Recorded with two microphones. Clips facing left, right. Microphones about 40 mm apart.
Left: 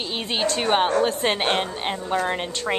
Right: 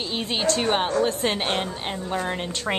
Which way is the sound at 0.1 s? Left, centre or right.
Centre.